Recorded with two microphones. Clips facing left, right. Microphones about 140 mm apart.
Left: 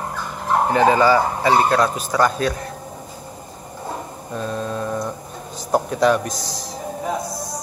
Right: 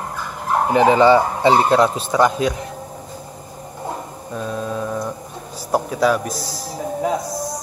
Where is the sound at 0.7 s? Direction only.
20° right (ahead or behind).